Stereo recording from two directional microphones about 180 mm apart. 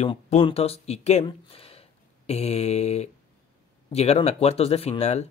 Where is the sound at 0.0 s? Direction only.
35° left (ahead or behind).